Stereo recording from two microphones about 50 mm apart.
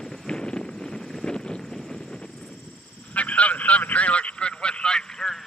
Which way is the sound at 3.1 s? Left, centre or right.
Left.